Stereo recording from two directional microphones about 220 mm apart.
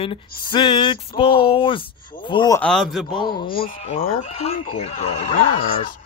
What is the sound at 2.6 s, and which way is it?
Speech, centre (ahead or behind).